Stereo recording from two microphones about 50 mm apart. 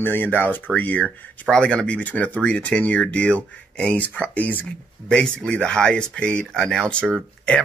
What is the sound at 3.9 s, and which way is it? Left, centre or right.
Speech, left.